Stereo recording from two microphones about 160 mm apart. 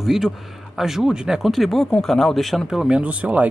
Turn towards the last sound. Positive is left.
turn(degrees=-10)  # may be behind; listen again after turning